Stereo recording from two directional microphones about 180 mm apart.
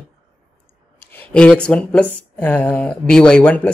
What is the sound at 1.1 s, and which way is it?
Speech, 10° left (ahead or behind).